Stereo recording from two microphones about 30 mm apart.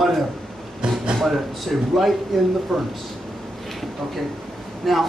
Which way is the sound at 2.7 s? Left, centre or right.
Centre.